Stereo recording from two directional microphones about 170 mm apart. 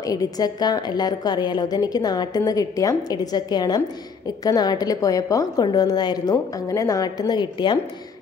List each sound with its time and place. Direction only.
0.0 s a woman's voice: 20° left (ahead or behind)